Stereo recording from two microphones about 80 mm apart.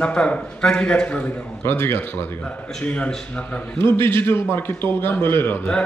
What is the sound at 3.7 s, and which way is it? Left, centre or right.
A man's voice, left.